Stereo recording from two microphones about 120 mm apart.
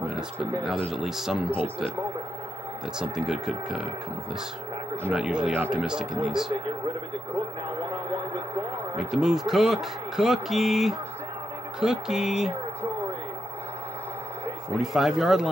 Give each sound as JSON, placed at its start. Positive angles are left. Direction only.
{"t": 0.0, "sound": "speech", "side_deg": -5}
{"t": 3.0, "sound": "speech", "side_deg": -5}
{"t": 5.1, "sound": "speech", "side_deg": -5}
{"t": 8.9, "sound": "speech", "side_deg": -5}
{"t": 14.8, "sound": "speech", "side_deg": 0}